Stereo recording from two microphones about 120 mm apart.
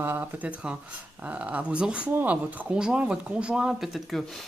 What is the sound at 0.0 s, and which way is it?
Speech, 20° right (ahead or behind).